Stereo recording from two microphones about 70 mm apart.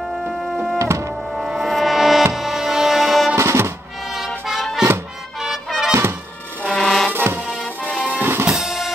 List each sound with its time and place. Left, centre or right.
0.7 s music: right
1.3 s music: centre
3.3 s music: right
4.5 s music: centre
5.9 s music: right
6.7 s music: centre
7.1 s music: right
8.5 s music: centre